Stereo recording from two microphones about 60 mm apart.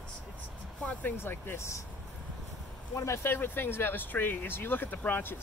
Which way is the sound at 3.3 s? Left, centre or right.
Left.